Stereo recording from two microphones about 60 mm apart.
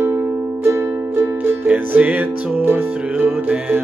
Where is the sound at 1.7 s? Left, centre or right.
Right.